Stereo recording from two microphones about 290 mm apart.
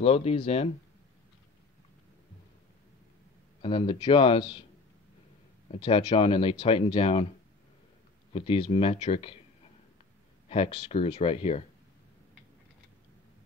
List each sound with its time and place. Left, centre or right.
0.0 s speech: left
3.6 s speech: centre
5.8 s speech: centre
8.3 s speech: centre
10.5 s speech: centre